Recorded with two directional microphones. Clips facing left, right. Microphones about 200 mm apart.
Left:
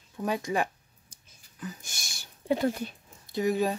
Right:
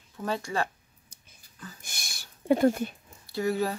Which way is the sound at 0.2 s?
15° left (ahead or behind).